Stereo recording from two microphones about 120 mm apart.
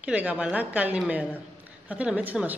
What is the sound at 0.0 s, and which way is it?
A woman's voice, 10° right (ahead or behind).